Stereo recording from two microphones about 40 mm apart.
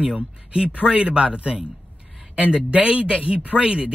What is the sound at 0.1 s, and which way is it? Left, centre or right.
Speech, right.